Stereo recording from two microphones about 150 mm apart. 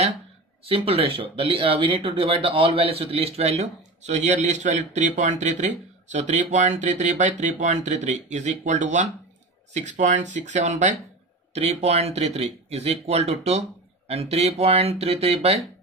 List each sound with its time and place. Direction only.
0.7 s speech: 40° right (ahead or behind)